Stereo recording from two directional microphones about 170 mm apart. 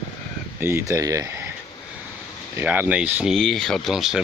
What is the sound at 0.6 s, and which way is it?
Speech, 15° right (ahead or behind).